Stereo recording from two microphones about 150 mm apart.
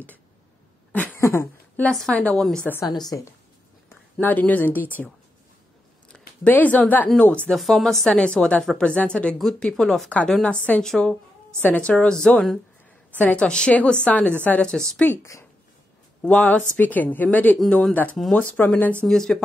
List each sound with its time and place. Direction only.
0.9 s a sound: 10° left (ahead or behind)
1.9 s speech: 5° left (ahead or behind)
2.9 s a woman's voice: 25° left (ahead or behind)
4.2 s a woman's voice: 10° left (ahead or behind)
16.2 s a woman's voice: 10° left (ahead or behind)